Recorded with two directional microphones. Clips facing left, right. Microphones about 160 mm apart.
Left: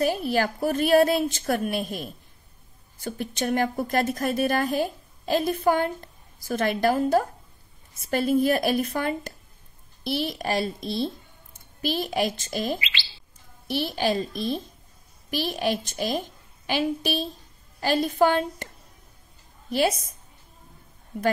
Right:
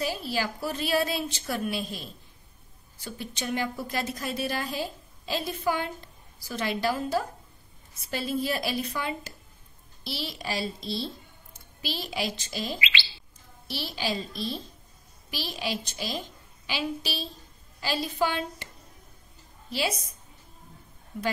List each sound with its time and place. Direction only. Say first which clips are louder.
0.0 s a woman's voice: left 7 dB; 55° left (ahead or behind)
19.7 s a woman's voice: left 7 dB; 50° left (ahead or behind)